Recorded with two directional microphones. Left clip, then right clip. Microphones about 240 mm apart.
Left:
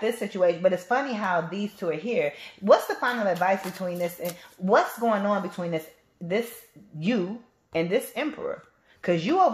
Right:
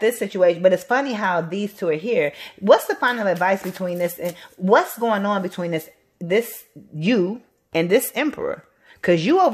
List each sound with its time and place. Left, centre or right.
0.0 s a woman's voice: right